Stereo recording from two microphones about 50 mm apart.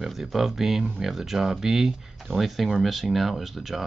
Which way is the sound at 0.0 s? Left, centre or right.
Centre.